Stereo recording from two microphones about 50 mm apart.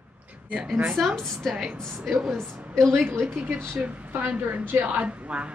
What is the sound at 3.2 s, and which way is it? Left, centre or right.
A woman's voice, right.